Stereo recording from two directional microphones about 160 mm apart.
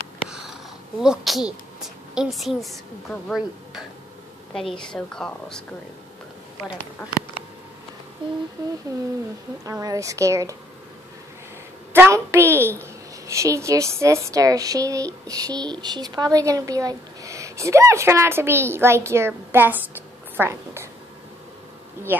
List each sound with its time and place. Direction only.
0.3 s a sound: 5° right (ahead or behind)
1.0 s a woman's voice: centre (ahead or behind)
8.2 s speech: 30° right (ahead or behind)
9.7 s a woman's voice: 20° right (ahead or behind)
11.9 s a woman's voice: 15° right (ahead or behind)
22.1 s speech: 10° right (ahead or behind)